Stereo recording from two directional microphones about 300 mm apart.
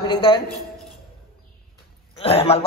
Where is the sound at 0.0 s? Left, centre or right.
Centre.